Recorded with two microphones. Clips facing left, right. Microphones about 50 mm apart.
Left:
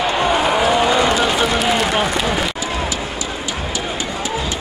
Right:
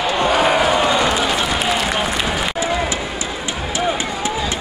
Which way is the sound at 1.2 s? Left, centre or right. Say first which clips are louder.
Left 2 dB; centre.